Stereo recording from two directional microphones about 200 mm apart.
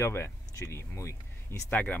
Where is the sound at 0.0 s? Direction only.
15° left (ahead or behind).